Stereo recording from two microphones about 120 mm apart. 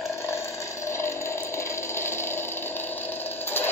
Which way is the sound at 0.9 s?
20° left (ahead or behind).